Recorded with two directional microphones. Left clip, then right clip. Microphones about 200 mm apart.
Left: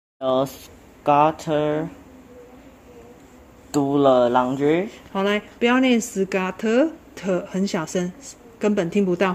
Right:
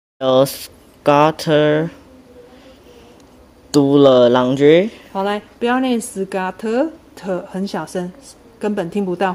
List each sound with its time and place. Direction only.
0.2 s speech: 60° right (ahead or behind)
3.7 s speech: 60° right (ahead or behind)
5.1 s speech: 20° left (ahead or behind)